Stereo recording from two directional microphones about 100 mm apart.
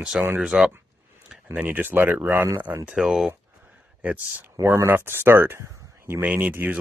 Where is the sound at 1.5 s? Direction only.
15° right (ahead or behind).